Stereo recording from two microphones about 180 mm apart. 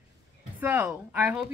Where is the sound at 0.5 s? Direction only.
10° right (ahead or behind).